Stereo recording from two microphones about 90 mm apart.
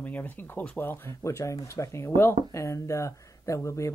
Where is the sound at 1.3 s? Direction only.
35° left (ahead or behind).